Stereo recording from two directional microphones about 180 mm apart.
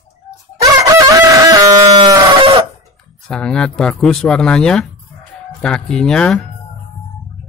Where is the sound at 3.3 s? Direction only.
5° left (ahead or behind).